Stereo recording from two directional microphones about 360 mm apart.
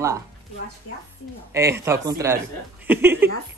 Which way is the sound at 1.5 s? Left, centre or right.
Centre.